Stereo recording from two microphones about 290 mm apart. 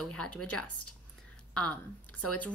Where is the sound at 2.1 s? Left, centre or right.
Left.